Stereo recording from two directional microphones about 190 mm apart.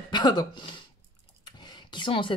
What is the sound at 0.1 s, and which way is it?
Speech, 20° left (ahead or behind).